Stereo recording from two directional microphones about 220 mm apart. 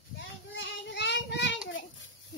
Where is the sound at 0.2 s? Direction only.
60° left (ahead or behind).